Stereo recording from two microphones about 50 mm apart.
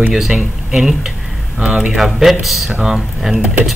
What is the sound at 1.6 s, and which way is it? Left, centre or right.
Speech, right.